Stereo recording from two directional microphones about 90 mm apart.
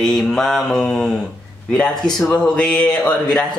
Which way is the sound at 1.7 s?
10° left (ahead or behind).